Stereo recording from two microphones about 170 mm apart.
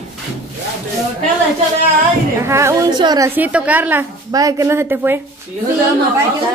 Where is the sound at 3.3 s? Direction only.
10° right (ahead or behind).